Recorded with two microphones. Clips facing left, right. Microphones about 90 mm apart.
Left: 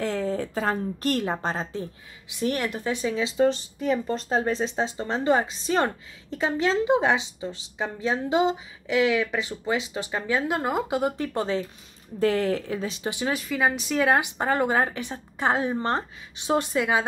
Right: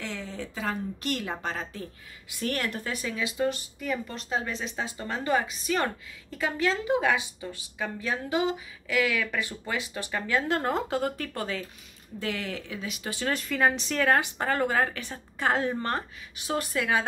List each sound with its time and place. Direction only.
0.0 s a woman's voice: 40° left (ahead or behind); by 11.6 s 25° left (ahead or behind)
12.2 s speech: 40° left (ahead or behind)
13.3 s speech: 5° left (ahead or behind); by 17.0 s 20° left (ahead or behind)